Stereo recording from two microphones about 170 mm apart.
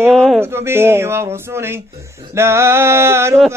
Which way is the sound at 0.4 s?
15° right (ahead or behind).